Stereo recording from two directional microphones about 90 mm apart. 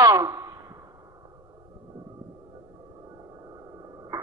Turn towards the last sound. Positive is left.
turn(degrees=-35)  # may be behind; listen again after turning